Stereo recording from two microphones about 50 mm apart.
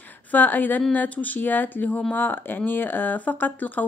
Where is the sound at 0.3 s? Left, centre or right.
Left.